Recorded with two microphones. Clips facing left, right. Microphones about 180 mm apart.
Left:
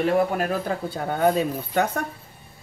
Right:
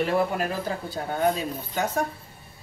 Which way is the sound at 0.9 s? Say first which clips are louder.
Left 3 dB; 60° left (ahead or behind).